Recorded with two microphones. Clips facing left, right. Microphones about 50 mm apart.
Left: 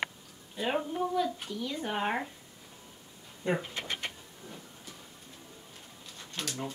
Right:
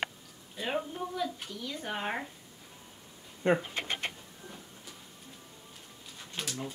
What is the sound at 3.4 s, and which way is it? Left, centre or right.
Speech, right.